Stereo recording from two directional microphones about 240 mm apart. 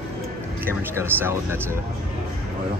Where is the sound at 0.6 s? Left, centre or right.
Centre.